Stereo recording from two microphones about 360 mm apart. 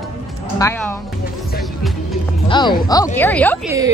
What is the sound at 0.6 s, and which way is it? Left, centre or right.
Speech, centre.